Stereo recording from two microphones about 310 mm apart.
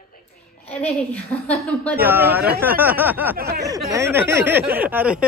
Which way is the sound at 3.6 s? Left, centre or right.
Centre.